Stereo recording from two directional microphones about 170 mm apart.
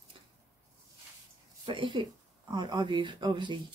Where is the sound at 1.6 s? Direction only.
30° right (ahead or behind).